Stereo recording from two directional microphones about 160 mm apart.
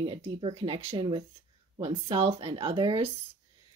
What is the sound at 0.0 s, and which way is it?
Speech, 35° right (ahead or behind).